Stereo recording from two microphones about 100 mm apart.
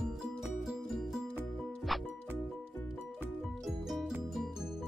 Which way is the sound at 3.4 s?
Centre (ahead or behind).